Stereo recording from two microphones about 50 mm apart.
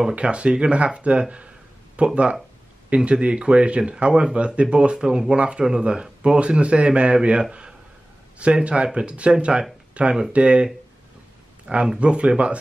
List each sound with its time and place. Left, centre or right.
0.1 s speech: right